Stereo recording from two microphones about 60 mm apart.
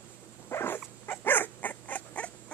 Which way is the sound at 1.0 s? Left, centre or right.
Left.